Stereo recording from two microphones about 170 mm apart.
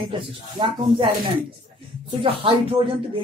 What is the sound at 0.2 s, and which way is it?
Speech, 30° right (ahead or behind).